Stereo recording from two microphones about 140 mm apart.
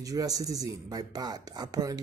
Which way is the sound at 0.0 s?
25° right (ahead or behind).